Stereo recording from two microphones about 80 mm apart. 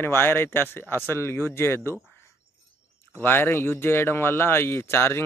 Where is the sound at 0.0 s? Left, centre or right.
Left.